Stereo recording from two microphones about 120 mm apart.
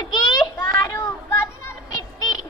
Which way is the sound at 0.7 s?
20° left (ahead or behind).